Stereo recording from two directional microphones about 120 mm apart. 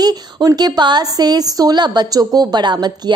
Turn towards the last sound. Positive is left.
turn(degrees=-35)  # may be behind; listen again after turning